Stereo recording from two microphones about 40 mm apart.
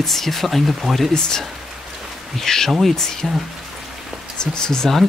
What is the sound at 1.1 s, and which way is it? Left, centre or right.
Speech, centre.